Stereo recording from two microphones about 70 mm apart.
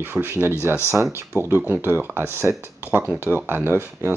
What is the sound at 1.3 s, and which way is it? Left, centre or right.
Speech, left.